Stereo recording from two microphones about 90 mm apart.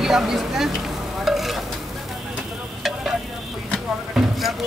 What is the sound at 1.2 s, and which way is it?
Stir, centre (ahead or behind).